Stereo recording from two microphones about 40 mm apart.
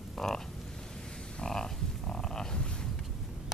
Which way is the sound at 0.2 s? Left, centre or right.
Centre.